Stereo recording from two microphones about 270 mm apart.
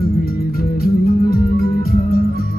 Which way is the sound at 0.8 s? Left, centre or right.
Left.